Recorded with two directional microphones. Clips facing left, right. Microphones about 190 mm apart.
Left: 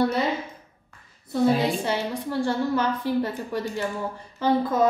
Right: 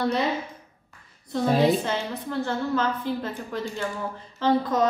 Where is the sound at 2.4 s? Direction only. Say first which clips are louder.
Left 2 dB; 15° left (ahead or behind).